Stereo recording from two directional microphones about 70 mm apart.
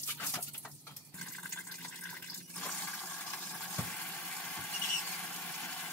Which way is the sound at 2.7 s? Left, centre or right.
Left.